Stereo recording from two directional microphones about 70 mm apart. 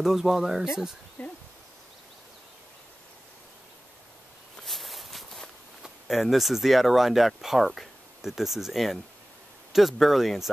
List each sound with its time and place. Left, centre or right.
0.0 s speech: centre
1.2 s a sound: left
4.6 s walk: centre
5.8 s speech: centre